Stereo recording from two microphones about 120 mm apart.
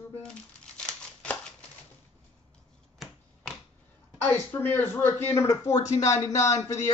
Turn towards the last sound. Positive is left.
turn(degrees=30)  # may be behind; listen again after turning